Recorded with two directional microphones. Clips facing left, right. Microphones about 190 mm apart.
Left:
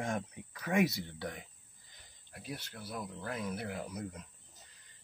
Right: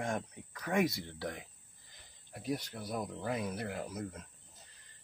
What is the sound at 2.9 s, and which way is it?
Speech, 10° right (ahead or behind).